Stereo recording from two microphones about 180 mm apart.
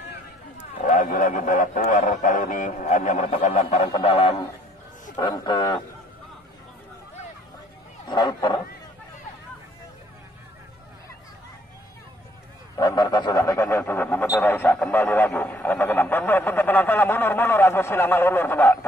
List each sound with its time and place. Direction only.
0.7 s a man's voice: 50° left (ahead or behind); by 5.8 s 25° left (ahead or behind)
8.1 s a man's voice: 25° left (ahead or behind)
12.7 s speech: 20° left (ahead or behind)